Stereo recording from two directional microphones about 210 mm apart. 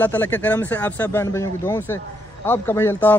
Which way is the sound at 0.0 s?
10° left (ahead or behind).